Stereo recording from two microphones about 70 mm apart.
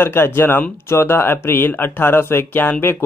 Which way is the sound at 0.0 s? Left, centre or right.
Left.